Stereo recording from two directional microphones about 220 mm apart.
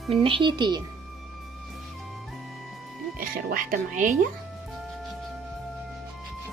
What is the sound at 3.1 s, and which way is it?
Speech, 40° right (ahead or behind).